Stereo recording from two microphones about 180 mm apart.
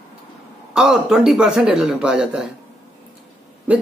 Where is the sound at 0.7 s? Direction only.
5° right (ahead or behind).